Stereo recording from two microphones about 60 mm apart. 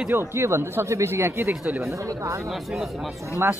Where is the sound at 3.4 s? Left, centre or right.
Right.